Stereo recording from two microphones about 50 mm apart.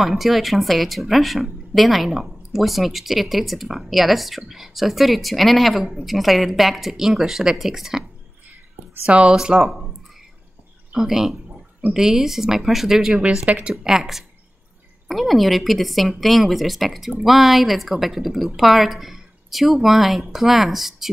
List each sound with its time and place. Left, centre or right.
0.0 s speech: centre
9.0 s speech: right
9.3 s speech: centre
10.9 s speech: centre